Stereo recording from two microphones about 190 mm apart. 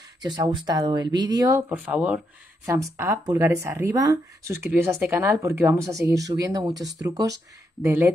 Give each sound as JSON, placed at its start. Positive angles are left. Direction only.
{"t": 0.2, "sound": "speech", "side_deg": -20}